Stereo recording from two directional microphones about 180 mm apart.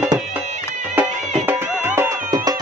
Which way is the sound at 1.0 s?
10° right (ahead or behind).